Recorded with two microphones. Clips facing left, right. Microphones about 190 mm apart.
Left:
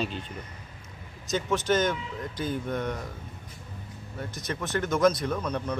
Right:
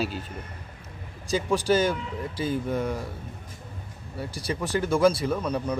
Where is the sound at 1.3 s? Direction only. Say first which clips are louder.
Right 3 dB; 10° right (ahead or behind).